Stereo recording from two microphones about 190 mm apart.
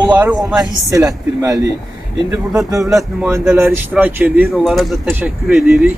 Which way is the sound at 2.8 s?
5° right (ahead or behind).